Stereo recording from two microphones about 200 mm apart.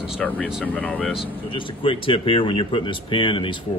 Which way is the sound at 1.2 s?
25° left (ahead or behind).